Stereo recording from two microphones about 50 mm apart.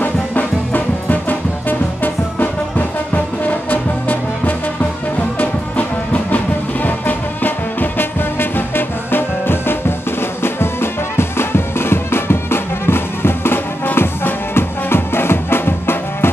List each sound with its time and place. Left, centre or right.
0.0 s music: left
3.4 s music: left